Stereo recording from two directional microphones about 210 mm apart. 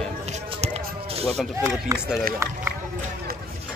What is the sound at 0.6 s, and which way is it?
Music, 30° right (ahead or behind).